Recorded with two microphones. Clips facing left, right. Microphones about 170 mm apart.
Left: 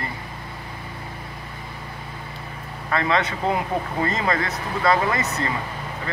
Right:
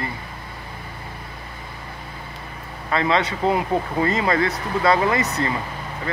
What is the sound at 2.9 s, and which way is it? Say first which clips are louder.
Speech: right 2 dB; 30° right (ahead or behind).